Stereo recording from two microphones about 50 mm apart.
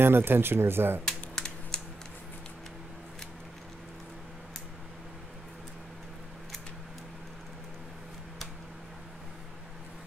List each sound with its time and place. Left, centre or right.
0.0 s speech: right
1.0 s typing: centre